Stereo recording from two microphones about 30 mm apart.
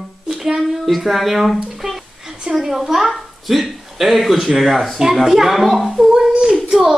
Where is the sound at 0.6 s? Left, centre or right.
Centre.